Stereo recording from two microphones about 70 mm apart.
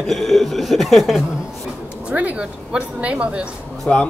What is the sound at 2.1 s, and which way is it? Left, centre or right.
Speech, centre.